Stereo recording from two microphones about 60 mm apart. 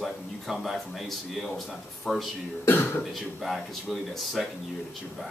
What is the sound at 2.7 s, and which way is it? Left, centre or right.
Speech, left.